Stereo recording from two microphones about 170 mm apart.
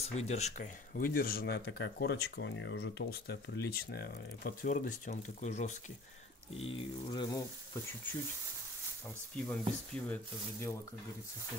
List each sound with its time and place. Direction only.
0.0 s speech: 40° left (ahead or behind)
9.3 s speech: 5° left (ahead or behind)